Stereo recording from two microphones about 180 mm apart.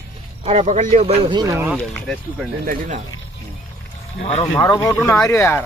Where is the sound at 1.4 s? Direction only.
15° right (ahead or behind).